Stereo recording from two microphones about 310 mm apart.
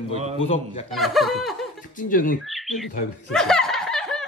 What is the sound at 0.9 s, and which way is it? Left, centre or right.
Speech, centre.